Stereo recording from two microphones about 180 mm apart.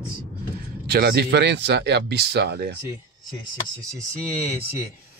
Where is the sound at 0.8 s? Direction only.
65° right (ahead or behind).